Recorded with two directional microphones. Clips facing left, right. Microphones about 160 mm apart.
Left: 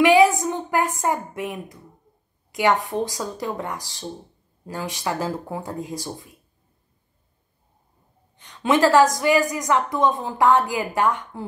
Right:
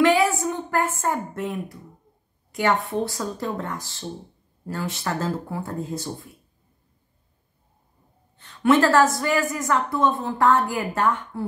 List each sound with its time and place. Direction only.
0.0 s a woman's voice: 15° left (ahead or behind)
8.4 s a woman's voice: 15° left (ahead or behind)